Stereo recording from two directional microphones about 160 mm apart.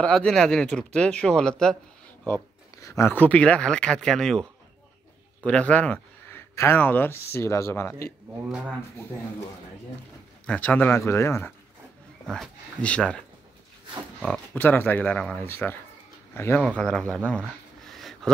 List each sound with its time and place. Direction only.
0.0 s speech: 5° left (ahead or behind)
8.5 s speech: 5° right (ahead or behind)
10.4 s speech: 10° left (ahead or behind)
12.3 s speech: 5° left (ahead or behind)
14.2 s speech: 5° left (ahead or behind)
16.6 s speech: 5° left (ahead or behind)
17.8 s a sound: centre (ahead or behind)